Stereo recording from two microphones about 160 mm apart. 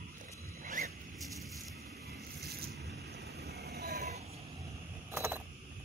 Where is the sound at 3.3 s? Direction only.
90° right.